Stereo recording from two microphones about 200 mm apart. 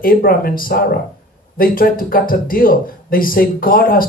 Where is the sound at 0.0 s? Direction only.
45° left (ahead or behind).